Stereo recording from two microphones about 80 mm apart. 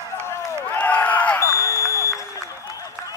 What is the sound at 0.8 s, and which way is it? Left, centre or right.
Crowd, left.